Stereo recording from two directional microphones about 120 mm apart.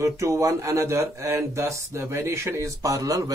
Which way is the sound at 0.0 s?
25° right (ahead or behind).